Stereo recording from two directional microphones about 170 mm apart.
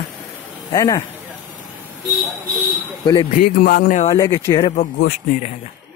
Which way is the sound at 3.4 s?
55° left (ahead or behind).